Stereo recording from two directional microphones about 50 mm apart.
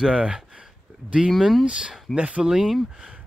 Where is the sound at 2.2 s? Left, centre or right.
Right.